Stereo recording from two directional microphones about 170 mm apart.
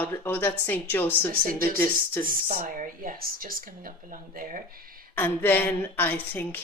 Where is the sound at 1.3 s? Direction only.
55° right (ahead or behind).